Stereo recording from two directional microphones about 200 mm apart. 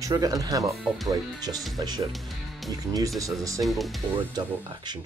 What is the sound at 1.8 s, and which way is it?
Speech, 20° right (ahead or behind).